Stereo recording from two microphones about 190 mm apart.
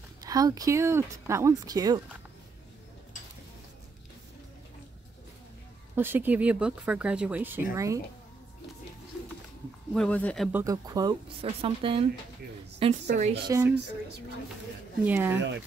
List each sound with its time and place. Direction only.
0.2 s speech: 20° right (ahead or behind)
5.9 s speech: 10° right (ahead or behind)
9.9 s speech: 5° left (ahead or behind)
10.5 s a woman's voice: 15° right (ahead or behind)
13.5 s speech: 10° right (ahead or behind)
15.0 s speech: 10° right (ahead or behind)